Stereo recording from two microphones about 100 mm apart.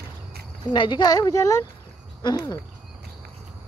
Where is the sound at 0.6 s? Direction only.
50° left (ahead or behind).